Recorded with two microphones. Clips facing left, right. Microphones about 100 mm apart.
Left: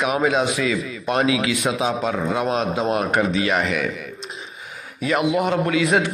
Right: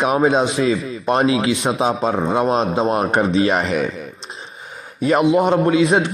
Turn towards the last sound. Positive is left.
turn(degrees=-30)  # may be behind; listen again after turning